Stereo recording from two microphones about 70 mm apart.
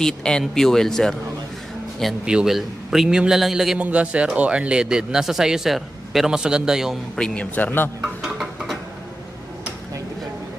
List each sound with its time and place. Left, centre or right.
0.0 s speech: centre
2.2 s a man's voice: centre
3.7 s speech: centre
7.2 s speech: centre
7.5 s speech: left
8.0 s music: centre